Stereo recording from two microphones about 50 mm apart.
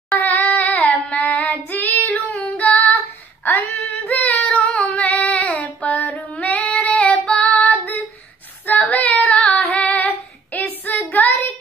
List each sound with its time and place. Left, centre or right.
0.2 s a sound: left
0.7 s child singing: left
2.0 s female singing: left
3.4 s a sound: left
4.1 s female singing: left
4.6 s female singing: centre
5.0 s child singing: left
7.2 s female singing: left
8.6 s child singing: left